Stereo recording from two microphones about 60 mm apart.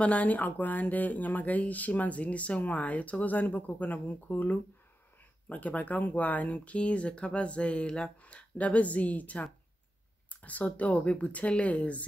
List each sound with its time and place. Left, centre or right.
0.0 s speech: left